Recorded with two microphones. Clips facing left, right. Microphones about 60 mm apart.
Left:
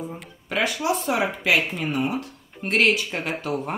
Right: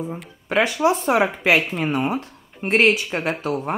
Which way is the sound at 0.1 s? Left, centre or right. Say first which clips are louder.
Right 6 dB; right.